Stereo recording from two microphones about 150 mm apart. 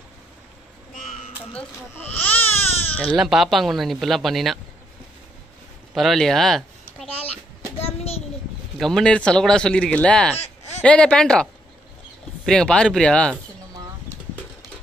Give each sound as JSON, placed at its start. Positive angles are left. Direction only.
{"t": 1.5, "sound": "speech", "side_deg": 10}
{"t": 2.5, "sound": "baby cry", "side_deg": 45}
{"t": 2.9, "sound": "baby cry", "side_deg": 10}
{"t": 3.2, "sound": "speech", "side_deg": 0}
{"t": 5.9, "sound": "speech", "side_deg": 0}
{"t": 7.8, "sound": "a sound", "side_deg": 45}
{"t": 8.7, "sound": "speech", "side_deg": 5}
{"t": 10.3, "sound": "a sound", "side_deg": 45}
{"t": 10.8, "sound": "speech", "side_deg": 5}
{"t": 12.4, "sound": "speech", "side_deg": 5}